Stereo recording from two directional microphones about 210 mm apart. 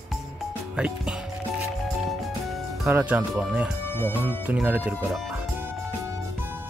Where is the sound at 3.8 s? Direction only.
10° left (ahead or behind).